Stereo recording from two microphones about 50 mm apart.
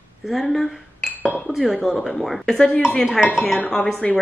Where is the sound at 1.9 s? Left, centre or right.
Centre.